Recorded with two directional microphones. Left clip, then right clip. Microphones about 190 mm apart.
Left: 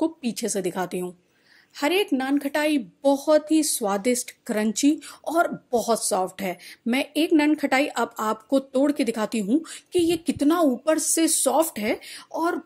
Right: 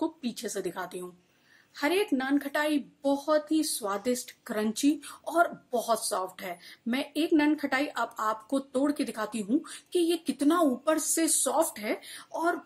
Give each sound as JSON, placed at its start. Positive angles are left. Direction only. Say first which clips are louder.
{"t": 0.0, "sound": "a woman's voice", "louder": "left 7 dB", "side_deg": 30}